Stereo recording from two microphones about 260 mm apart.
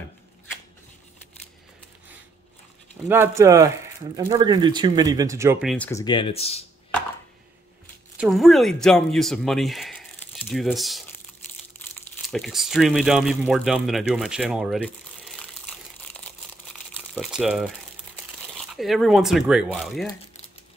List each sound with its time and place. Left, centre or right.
3.1 s speech: centre
5.9 s speech: centre
8.2 s speech: centre
12.3 s speech: centre
15.6 s crumpling: centre
17.1 s speech: centre
18.8 s speech: centre